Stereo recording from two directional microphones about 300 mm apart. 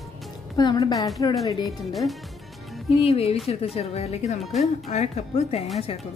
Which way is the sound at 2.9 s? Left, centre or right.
Centre.